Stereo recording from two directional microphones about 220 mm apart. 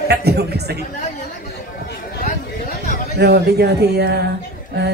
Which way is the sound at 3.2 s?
45° right (ahead or behind).